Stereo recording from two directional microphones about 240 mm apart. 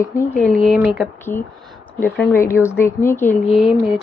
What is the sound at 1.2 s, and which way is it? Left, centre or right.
Speech, centre.